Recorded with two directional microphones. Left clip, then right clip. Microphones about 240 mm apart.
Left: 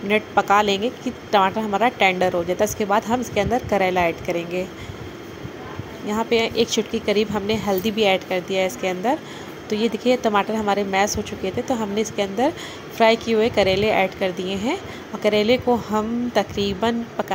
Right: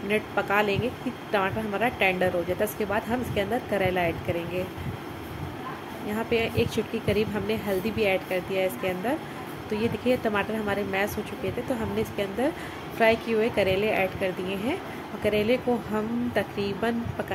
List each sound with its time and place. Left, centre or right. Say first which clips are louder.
0.1 s a woman's voice: left 8 dB; centre
6.1 s a woman's voice: left 6 dB; centre